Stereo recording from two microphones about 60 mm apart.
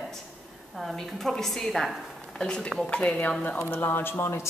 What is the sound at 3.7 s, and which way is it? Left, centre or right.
Speech, left.